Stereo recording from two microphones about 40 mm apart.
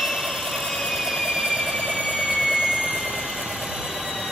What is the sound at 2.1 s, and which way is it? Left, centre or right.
Vehicle, centre.